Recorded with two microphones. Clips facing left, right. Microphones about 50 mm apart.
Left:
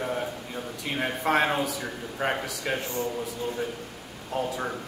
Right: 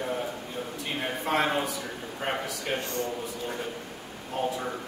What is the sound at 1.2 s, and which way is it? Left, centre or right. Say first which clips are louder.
Speech: left 2 dB; left.